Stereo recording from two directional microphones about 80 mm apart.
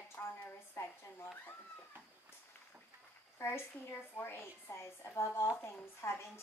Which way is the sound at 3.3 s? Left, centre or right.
Left.